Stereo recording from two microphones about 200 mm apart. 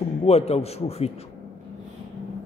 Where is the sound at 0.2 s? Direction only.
30° left (ahead or behind).